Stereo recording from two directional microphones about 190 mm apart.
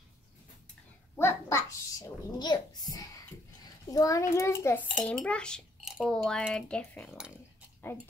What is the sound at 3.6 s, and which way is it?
A child's voice, 20° left (ahead or behind).